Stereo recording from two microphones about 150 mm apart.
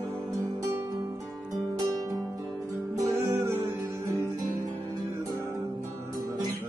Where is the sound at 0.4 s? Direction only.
15° right (ahead or behind).